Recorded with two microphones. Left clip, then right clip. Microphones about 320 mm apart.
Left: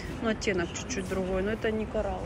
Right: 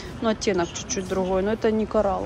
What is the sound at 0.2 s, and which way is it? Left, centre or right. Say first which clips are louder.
Speech: right 6 dB; centre.